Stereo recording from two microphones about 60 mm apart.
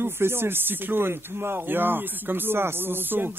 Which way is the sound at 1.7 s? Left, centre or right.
Right.